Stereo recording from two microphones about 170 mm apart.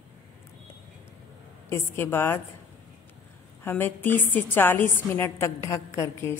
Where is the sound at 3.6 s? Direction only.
10° left (ahead or behind).